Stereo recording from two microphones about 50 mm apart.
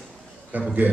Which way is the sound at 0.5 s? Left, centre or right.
Right.